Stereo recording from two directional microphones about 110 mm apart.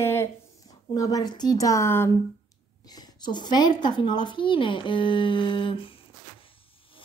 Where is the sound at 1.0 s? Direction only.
35° left (ahead or behind).